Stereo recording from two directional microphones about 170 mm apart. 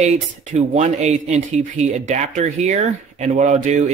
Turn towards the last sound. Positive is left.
turn(degrees=-45)  # may be behind; listen again after turning